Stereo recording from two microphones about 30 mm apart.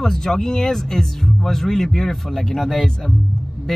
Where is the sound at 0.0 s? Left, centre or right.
Centre.